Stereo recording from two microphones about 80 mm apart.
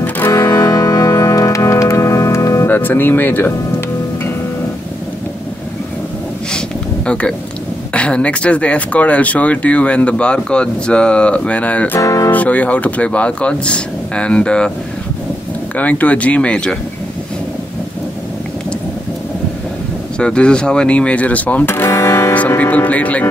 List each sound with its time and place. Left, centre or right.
0.3 s music: left
2.7 s speech: left
7.1 s speech: centre
12.0 s music: left
12.3 s speech: centre
15.7 s speech: centre
20.2 s speech: centre; by 22.3 s left
22.6 s speech: left